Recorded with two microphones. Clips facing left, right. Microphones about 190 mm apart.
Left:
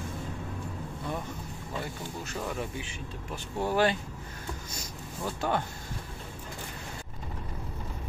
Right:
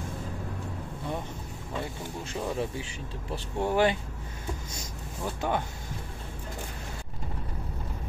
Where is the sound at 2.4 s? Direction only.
30° right (ahead or behind).